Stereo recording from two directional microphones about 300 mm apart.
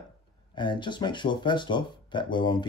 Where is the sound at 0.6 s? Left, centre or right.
Centre.